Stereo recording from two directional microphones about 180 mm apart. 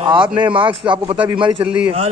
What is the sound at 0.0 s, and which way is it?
Speech, 25° right (ahead or behind).